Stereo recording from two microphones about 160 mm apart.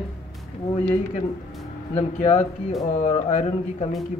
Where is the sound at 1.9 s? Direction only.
45° left (ahead or behind).